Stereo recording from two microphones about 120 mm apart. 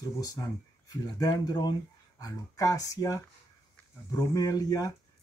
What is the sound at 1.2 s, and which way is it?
Speech, 35° left (ahead or behind).